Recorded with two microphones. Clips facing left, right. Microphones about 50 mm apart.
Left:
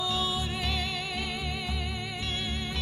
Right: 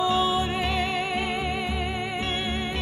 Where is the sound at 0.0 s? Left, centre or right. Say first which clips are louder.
Right 8 dB; right.